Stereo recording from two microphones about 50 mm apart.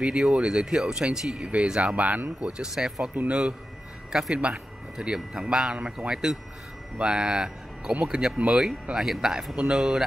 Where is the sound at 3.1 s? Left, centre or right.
Right.